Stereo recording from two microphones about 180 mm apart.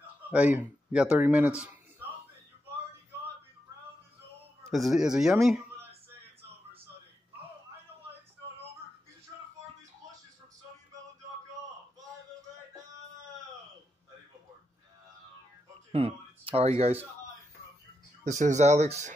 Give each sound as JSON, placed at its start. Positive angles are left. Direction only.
{"t": 0.3, "sound": "a man's voice", "side_deg": -10}
{"t": 4.6, "sound": "speech", "side_deg": 0}
{"t": 15.9, "sound": "a sound", "side_deg": -35}
{"t": 18.2, "sound": "speech", "side_deg": -40}